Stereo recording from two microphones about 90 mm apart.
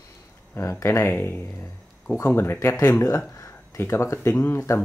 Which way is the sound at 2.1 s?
30° left (ahead or behind).